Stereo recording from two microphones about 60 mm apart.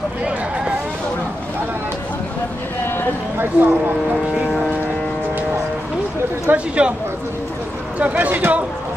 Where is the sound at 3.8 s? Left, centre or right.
Right.